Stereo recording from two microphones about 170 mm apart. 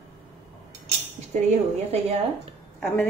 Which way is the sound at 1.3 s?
40° right (ahead or behind).